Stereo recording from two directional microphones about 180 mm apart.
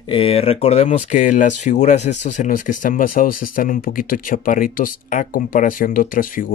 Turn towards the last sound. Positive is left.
turn(degrees=50)  # may be behind; listen again after turning